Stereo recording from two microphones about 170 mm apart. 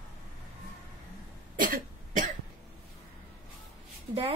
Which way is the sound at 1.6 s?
50° right (ahead or behind).